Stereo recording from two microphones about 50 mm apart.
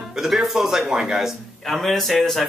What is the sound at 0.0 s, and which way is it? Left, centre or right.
Speech, centre.